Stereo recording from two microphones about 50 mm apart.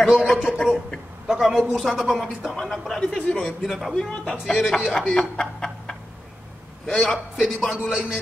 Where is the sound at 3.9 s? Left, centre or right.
Centre.